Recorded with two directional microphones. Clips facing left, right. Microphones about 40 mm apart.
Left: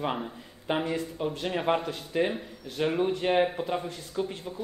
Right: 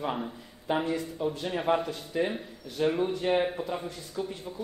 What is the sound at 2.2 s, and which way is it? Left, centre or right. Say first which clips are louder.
Speech: left 2 dB; left.